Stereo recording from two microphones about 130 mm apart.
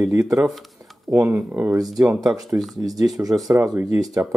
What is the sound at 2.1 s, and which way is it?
Speech, 30° right (ahead or behind).